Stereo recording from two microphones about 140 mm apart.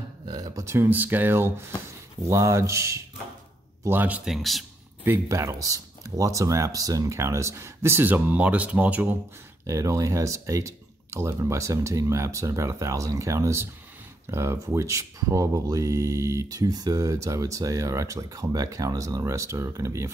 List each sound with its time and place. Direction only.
0.2 s speech: 30° right (ahead or behind); by 4.6 s centre (ahead or behind)
5.0 s speech: 20° right (ahead or behind)
9.7 s speech: 20° right (ahead or behind)